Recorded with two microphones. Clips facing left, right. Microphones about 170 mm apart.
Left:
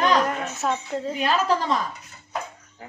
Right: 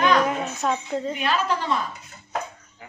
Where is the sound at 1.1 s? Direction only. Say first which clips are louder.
Left 5 dB; 35° left (ahead or behind).